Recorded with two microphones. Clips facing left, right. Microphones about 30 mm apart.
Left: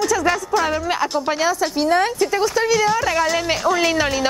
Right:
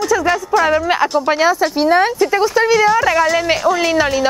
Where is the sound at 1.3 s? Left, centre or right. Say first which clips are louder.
Right 6 dB; centre.